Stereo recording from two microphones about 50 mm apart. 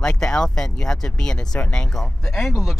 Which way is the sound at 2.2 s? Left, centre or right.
Centre.